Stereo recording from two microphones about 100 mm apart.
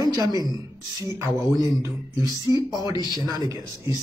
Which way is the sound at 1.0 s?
35° right (ahead or behind).